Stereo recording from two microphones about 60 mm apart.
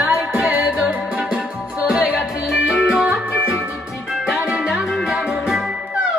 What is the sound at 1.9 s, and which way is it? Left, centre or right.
Music, centre.